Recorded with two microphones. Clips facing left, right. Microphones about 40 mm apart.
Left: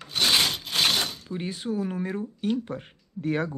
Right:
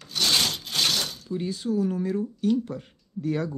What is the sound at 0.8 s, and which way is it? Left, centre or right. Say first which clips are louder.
Speech: left 2 dB; left.